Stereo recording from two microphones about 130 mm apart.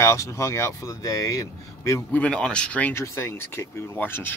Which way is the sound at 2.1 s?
10° left (ahead or behind).